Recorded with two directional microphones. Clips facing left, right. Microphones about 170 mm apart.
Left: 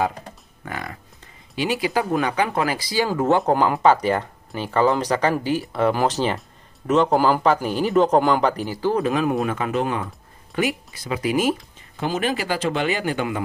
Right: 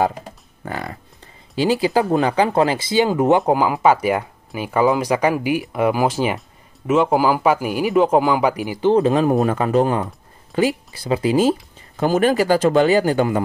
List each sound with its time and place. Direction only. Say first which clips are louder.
0.7 s speech: right 4 dB; 30° right (ahead or behind); by 8.9 s 10° right (ahead or behind)
8.9 s speech: right 6 dB; 30° right (ahead or behind)
12.0 s speech: right 7 dB; 45° right (ahead or behind)